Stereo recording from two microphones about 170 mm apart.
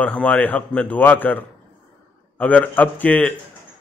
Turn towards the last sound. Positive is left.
turn(degrees=10)  # may be behind; listen again after turning